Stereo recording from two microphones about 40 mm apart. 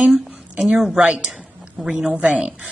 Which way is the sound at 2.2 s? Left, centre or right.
Right.